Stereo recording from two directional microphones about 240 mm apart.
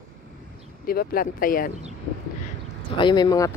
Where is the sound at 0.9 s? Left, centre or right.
Left.